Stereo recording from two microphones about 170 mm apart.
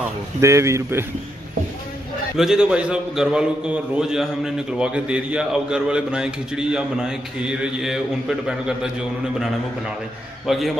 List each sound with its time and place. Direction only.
0.4 s speech: 15° right (ahead or behind)
2.3 s a man's voice: 5° right (ahead or behind)
10.4 s a man's voice: centre (ahead or behind)